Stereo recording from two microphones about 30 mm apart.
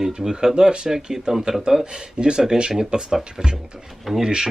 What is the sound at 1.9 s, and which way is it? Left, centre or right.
Speech, right.